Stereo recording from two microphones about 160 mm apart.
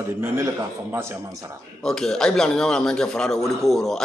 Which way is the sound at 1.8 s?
5° left (ahead or behind).